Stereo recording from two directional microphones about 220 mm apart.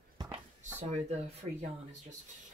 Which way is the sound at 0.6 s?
30° right (ahead or behind).